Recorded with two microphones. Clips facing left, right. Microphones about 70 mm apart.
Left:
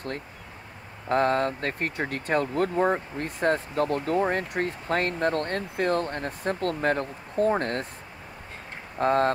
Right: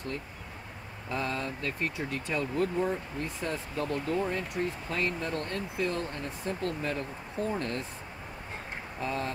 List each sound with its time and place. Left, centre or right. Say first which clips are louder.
1.0 s speech: left 10 dB; left
9.0 s speech: left 11 dB; left